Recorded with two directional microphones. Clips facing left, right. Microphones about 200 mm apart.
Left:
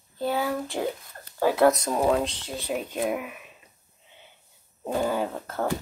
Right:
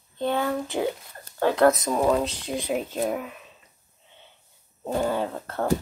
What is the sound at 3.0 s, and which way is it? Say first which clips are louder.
Speech: right 1 dB; 10° left (ahead or behind).